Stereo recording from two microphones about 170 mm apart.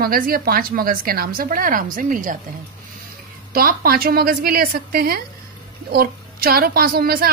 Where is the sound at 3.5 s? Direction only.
60° right (ahead or behind).